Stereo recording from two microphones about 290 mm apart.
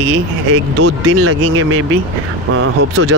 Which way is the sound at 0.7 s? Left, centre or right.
Right.